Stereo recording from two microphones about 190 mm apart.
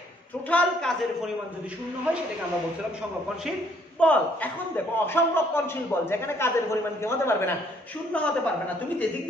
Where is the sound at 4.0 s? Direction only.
5° left (ahead or behind).